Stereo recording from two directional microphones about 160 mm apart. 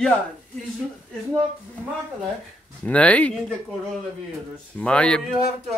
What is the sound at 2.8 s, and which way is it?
Speech, 10° left (ahead or behind).